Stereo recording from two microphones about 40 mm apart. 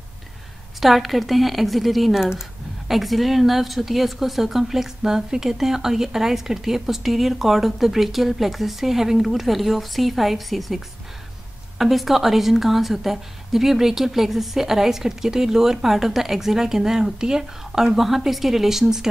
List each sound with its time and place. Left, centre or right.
0.7 s speech: centre
11.8 s a woman's voice: centre